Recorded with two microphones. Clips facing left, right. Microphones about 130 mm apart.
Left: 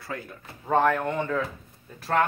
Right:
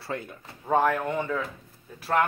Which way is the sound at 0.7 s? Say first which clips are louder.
Left 1 dB; 10° right (ahead or behind).